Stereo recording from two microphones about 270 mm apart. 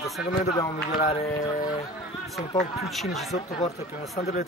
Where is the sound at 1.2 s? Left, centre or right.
Centre.